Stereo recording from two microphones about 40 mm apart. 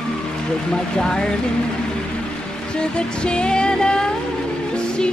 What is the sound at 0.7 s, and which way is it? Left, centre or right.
Music, centre.